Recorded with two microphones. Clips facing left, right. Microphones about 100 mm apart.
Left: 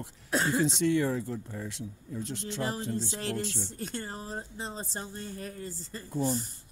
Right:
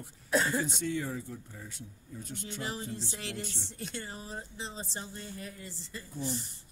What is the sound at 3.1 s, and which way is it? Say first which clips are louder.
Speech: left 7 dB; 40° left (ahead or behind).